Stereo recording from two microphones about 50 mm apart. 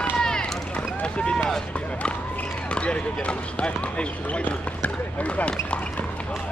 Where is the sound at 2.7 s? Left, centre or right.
Left.